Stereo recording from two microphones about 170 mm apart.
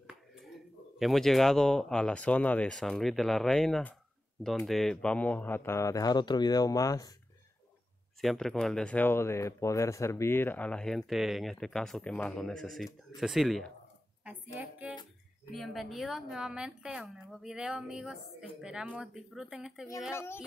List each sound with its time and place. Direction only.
0.9 s speech: centre (ahead or behind); by 7.2 s 20° left (ahead or behind)
8.2 s speech: centre (ahead or behind)
14.2 s a sound: 10° right (ahead or behind)
15.5 s speech: centre (ahead or behind)
20.1 s speech: 15° left (ahead or behind)